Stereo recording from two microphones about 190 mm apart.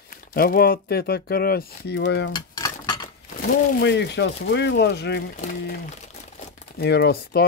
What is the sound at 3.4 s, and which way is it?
Speech, 65° left (ahead or behind).